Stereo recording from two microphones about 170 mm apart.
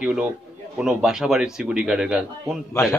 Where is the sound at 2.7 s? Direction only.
15° left (ahead or behind).